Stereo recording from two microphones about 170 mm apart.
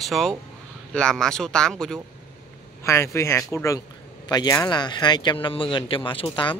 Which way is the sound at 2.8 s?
15° left (ahead or behind).